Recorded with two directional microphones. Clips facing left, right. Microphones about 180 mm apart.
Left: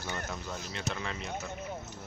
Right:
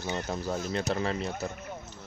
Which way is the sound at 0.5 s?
50° right (ahead or behind).